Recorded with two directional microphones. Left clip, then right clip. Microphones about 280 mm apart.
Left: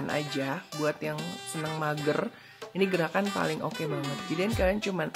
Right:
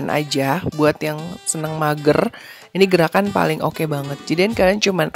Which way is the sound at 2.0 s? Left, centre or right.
Right.